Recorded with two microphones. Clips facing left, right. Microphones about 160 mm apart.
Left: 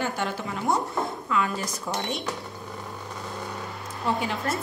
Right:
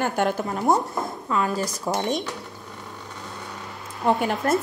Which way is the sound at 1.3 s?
35° right (ahead or behind).